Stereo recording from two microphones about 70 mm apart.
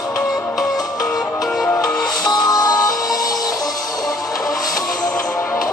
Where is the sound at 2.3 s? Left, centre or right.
Left.